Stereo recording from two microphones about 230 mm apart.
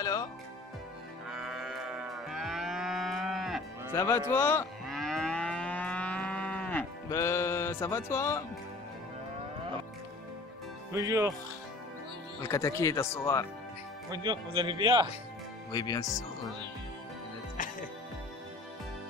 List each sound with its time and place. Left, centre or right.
0.0 s speech: centre
1.3 s moo: centre
3.9 s speech: centre
4.3 s moo: centre
10.9 s speech: centre
12.4 s speech: centre
14.1 s speech: centre
15.7 s speech: centre
17.6 s music: left